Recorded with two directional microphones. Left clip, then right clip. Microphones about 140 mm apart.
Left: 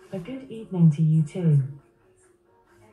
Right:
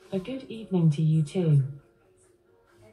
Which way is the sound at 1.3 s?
40° right (ahead or behind).